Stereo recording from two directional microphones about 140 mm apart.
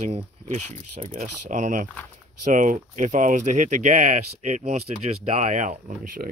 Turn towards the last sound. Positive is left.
turn(degrees=-75)  # may be behind; listen again after turning